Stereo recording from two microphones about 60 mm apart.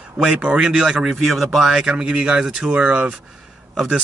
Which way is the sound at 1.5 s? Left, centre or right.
Centre.